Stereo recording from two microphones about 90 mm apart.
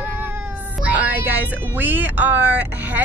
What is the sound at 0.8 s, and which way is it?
Speech, 15° right (ahead or behind).